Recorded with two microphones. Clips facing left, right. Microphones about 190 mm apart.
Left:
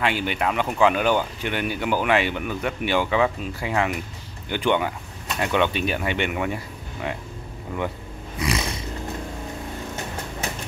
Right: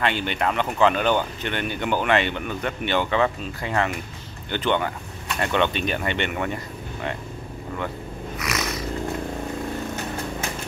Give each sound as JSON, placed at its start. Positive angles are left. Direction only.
{"t": 0.0, "sound": "speech", "side_deg": 10}
{"t": 8.4, "sound": "snoring", "side_deg": 30}